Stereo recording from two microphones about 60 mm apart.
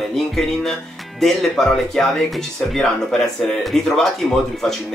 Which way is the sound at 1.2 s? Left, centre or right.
Centre.